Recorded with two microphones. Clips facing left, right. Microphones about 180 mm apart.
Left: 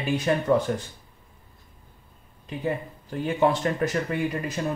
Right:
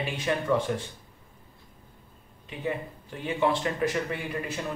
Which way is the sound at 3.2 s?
40° left (ahead or behind).